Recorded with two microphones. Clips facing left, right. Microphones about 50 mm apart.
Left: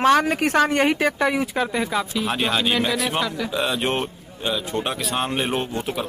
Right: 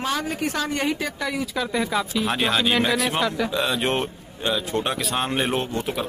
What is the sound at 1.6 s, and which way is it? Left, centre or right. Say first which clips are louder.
Speech: even; centre.